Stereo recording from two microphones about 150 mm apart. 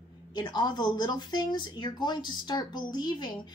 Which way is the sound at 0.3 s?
30° left (ahead or behind).